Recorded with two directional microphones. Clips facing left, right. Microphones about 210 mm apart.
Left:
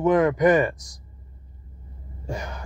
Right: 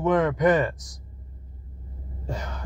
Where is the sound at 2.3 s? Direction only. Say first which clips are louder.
Left 2 dB; 10° left (ahead or behind).